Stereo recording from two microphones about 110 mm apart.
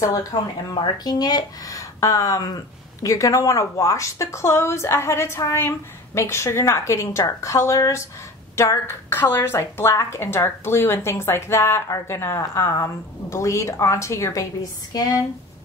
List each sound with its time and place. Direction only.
0.3 s a woman's voice: 35° left (ahead or behind)